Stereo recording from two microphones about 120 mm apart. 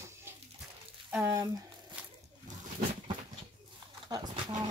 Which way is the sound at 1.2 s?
25° right (ahead or behind).